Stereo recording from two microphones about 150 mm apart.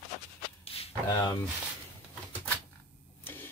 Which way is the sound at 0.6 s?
40° left (ahead or behind).